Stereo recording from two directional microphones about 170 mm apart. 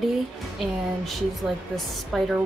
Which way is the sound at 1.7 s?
Centre (ahead or behind).